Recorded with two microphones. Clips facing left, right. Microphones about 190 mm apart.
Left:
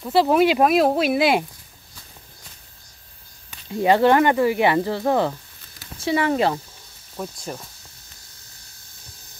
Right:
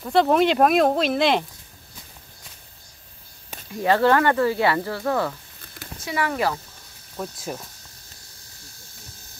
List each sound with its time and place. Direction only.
0.0 s speech: 5° left (ahead or behind)
3.7 s speech: 15° left (ahead or behind)
7.3 s speech: 5° right (ahead or behind)